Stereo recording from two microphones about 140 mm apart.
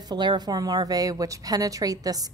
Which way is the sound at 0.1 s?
30° right (ahead or behind).